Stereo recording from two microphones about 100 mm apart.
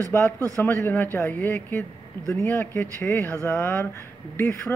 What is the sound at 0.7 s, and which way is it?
Speech, 15° left (ahead or behind).